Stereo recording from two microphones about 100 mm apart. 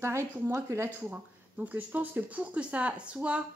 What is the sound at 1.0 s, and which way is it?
Speech, 15° right (ahead or behind).